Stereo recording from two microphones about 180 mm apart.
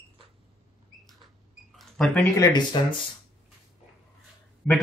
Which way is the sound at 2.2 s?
20° left (ahead or behind).